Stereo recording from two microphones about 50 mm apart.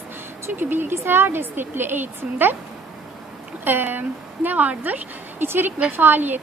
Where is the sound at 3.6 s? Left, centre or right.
Right.